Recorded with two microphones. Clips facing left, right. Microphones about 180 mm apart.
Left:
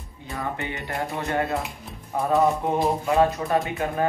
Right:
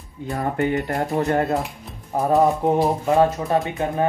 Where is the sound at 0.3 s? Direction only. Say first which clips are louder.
Right 8 dB; 45° right (ahead or behind).